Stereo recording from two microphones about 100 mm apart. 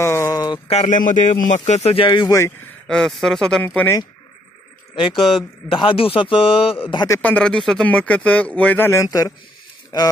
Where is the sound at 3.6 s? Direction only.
20° left (ahead or behind).